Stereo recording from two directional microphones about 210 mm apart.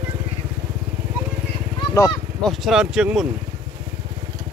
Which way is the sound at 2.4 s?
Centre (ahead or behind).